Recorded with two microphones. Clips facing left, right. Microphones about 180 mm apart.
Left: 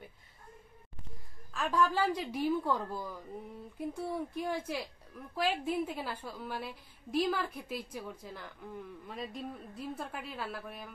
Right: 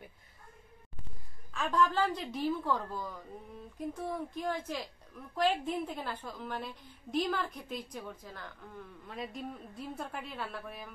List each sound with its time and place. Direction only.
1.5 s a woman's voice: 5° left (ahead or behind)